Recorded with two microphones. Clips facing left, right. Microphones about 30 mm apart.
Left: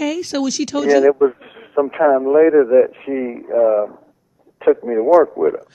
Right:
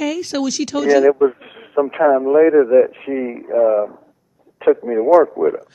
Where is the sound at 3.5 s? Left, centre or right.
Centre.